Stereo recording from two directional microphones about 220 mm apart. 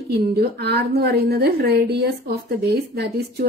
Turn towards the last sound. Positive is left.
turn(degrees=-45)  # may be behind; listen again after turning